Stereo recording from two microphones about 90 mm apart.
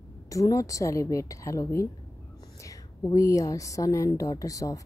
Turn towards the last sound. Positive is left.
turn(degrees=40)  # may be behind; listen again after turning